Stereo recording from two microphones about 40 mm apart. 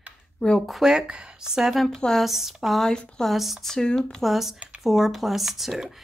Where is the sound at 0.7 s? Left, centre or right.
Centre.